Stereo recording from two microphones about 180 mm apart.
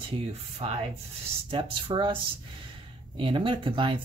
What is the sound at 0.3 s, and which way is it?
Speech, 35° right (ahead or behind).